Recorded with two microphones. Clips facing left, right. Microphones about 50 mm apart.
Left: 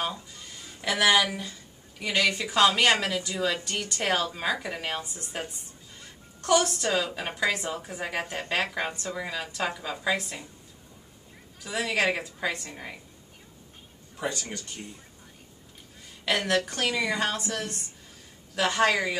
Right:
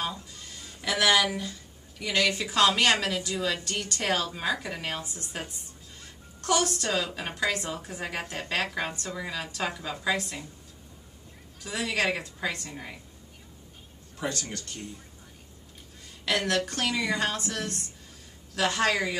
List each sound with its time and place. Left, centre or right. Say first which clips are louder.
0.0 s a sound: left 1 dB; centre
2.0 s a woman's voice: left 1 dB; centre
11.6 s a woman's voice: left 2 dB; centre
14.1 s a woman's voice: left 1 dB; centre
16.3 s a woman's voice: left 1 dB; centre